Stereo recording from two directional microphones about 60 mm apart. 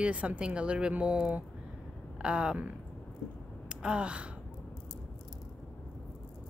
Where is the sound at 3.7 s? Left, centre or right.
Centre.